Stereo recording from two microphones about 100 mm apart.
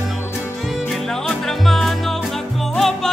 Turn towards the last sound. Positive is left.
turn(degrees=0)  # may be behind; listen again after turning